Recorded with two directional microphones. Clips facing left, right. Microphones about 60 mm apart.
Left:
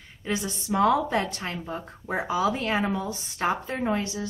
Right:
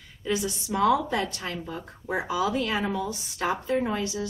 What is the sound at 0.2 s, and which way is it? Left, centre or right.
A woman's voice, left.